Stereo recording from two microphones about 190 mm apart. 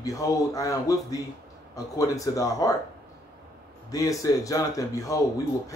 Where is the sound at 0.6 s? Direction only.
15° left (ahead or behind).